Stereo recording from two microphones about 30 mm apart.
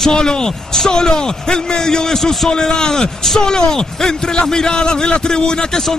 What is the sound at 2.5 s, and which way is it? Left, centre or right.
Speech, left.